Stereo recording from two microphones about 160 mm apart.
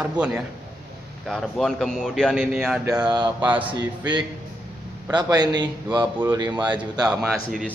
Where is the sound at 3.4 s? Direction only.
10° right (ahead or behind).